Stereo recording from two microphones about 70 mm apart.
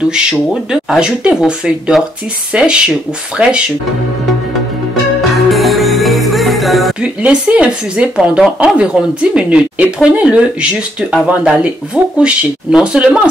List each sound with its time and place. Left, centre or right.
0.0 s speech: centre
5.3 s music: centre
7.0 s speech: centre